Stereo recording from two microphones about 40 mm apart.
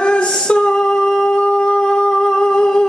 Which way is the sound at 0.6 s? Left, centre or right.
Centre.